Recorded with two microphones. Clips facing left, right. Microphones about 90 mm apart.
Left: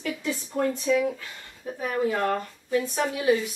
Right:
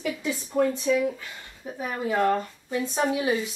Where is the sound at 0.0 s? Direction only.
15° right (ahead or behind).